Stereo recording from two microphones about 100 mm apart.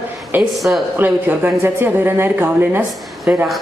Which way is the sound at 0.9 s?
20° right (ahead or behind).